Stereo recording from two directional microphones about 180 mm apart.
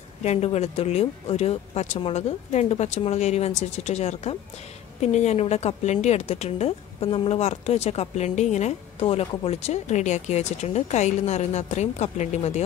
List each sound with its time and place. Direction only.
0.2 s speech: 35° left (ahead or behind)